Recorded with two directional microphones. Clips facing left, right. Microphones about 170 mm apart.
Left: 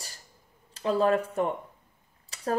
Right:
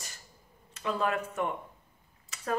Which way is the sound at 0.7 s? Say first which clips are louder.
Left 7 dB; 35° left (ahead or behind).